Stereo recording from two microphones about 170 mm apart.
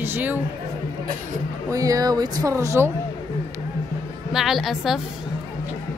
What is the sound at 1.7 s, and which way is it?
Speech, 20° right (ahead or behind).